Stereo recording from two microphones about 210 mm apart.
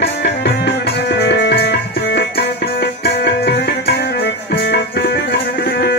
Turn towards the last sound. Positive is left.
turn(degrees=50)  # may be behind; listen again after turning